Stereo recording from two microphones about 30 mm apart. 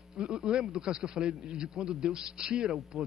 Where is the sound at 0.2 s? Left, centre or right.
Right.